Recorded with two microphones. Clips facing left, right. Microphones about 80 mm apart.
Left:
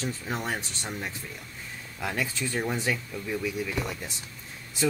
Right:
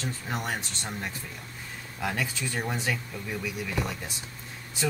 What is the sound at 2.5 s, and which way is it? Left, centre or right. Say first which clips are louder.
Speech: left 4 dB; centre.